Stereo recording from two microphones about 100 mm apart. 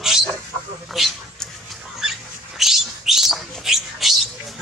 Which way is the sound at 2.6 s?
5° right (ahead or behind).